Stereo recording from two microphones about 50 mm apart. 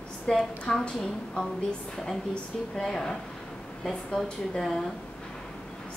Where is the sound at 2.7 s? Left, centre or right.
Centre.